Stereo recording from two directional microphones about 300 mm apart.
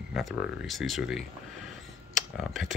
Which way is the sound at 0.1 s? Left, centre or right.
Centre.